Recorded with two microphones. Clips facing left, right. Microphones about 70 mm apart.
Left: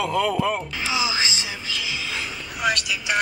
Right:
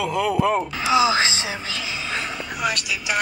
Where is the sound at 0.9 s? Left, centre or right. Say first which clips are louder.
Right 7 dB; right.